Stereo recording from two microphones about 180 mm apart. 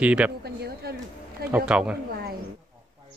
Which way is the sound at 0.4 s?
60° right (ahead or behind).